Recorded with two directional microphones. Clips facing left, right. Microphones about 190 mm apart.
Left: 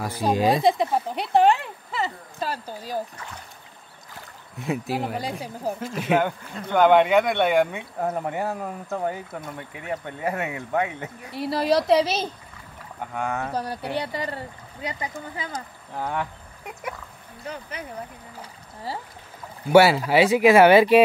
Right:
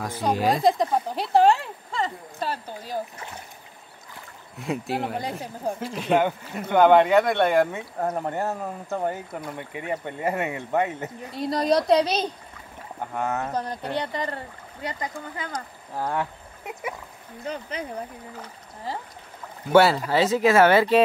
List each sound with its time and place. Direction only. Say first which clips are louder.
0.0 s speech: left 2 dB; 10° left (ahead or behind)
0.7 s speech: even; centre (ahead or behind)
4.6 s speech: left 1 dB; centre (ahead or behind)
6.6 s speech: right 1 dB; 5° right (ahead or behind)
13.5 s speech: even; 10° left (ahead or behind)
15.9 s speech: right 1 dB; 5° right (ahead or behind)
19.6 s speech: left 2 dB; 10° left (ahead or behind)